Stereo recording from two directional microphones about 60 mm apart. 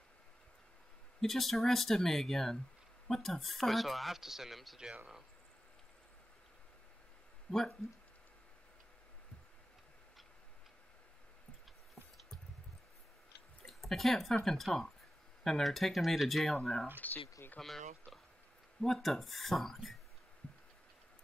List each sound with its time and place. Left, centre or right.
1.2 s speech: centre
7.5 s speech: centre
13.7 s a sound: centre
14.4 s speech: centre
17.0 s speech: left
17.6 s speech: centre